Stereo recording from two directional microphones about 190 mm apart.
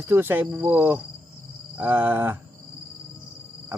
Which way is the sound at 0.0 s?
10° right (ahead or behind).